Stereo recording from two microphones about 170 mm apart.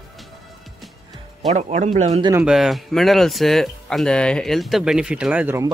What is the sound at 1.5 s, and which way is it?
Speech, 45° right (ahead or behind).